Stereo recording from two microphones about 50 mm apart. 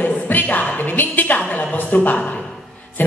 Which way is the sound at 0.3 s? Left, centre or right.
Left.